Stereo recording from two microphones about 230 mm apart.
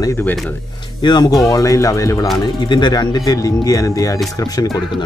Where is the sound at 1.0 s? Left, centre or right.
Centre.